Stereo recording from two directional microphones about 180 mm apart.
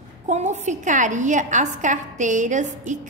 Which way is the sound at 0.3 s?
40° right (ahead or behind).